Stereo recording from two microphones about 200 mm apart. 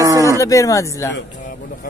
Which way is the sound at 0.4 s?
15° left (ahead or behind).